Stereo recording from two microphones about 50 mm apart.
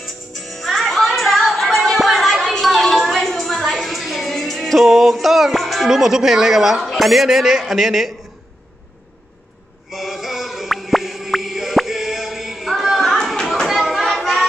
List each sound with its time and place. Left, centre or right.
0.0 s music: centre
5.9 s a man's voice: centre
9.8 s chant: centre
13.7 s a sound: centre
14.0 s music: centre